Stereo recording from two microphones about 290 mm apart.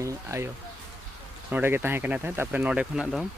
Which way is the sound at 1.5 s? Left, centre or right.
Centre.